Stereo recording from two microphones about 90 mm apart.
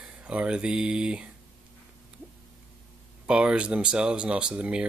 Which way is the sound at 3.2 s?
10° right (ahead or behind).